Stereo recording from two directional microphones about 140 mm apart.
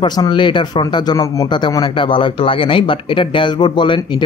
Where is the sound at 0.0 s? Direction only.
30° left (ahead or behind).